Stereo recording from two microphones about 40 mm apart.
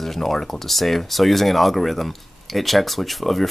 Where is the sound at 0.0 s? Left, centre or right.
Centre.